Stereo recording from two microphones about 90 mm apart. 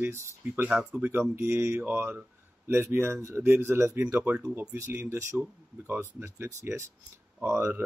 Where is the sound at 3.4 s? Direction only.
25° right (ahead or behind).